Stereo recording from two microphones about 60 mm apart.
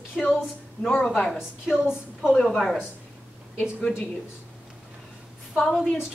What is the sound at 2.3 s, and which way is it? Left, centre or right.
Speech, centre.